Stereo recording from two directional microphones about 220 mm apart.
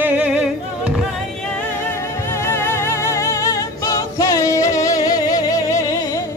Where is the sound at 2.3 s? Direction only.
10° left (ahead or behind).